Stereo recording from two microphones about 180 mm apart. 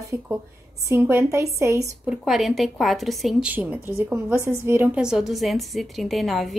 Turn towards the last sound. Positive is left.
turn(degrees=0)  # may be behind; listen again after turning